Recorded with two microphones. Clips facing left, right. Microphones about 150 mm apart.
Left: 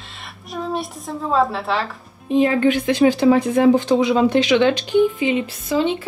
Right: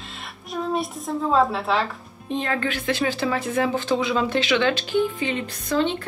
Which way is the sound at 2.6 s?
20° left (ahead or behind).